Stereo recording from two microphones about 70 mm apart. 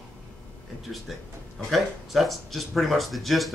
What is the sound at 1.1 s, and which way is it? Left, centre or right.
Speech, centre.